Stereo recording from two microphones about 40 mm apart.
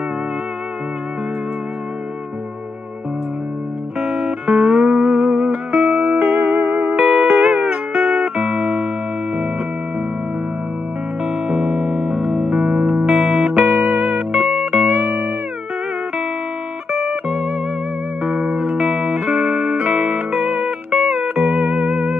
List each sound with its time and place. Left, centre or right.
4.0 s music: centre
5.9 s music: right
6.2 s music: centre
11.6 s music: right
13.0 s music: centre
14.9 s music: right
16.9 s music: centre
19.1 s music: right
19.4 s music: centre
19.8 s music: right
20.1 s music: centre